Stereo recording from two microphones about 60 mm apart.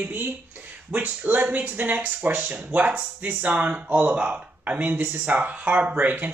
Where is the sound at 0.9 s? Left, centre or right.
Right.